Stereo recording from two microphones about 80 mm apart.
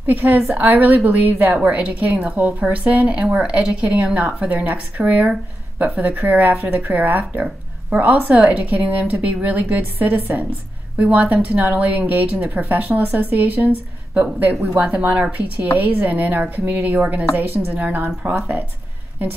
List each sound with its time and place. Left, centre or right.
0.0 s a woman's voice: right